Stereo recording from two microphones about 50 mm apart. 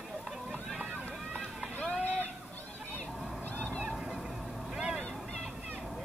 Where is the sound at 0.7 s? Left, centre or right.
Right.